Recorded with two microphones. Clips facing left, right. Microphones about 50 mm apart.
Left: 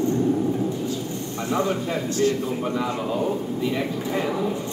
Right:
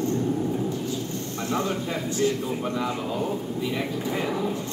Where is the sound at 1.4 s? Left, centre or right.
Centre.